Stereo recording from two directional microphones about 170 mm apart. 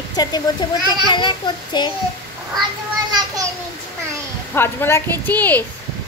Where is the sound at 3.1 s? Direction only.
20° right (ahead or behind).